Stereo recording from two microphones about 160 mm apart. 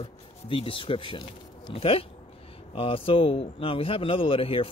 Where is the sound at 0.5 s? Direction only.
35° left (ahead or behind).